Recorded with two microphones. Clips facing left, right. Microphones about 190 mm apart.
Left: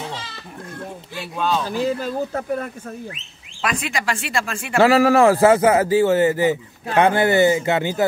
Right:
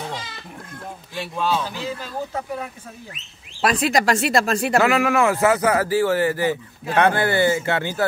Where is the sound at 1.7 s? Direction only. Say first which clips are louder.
Left 8 dB; 45° left (ahead or behind).